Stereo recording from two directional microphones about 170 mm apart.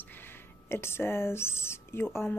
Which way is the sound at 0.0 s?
10° left (ahead or behind).